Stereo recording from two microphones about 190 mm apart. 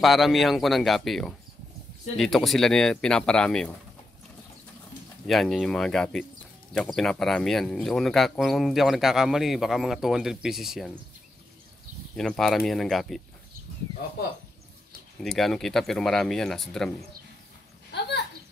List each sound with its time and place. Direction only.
0.0 s speech: centre (ahead or behind)
5.2 s speech: centre (ahead or behind)
12.2 s speech: centre (ahead or behind)
15.2 s speech: centre (ahead or behind)
17.9 s a sound: 60° left (ahead or behind)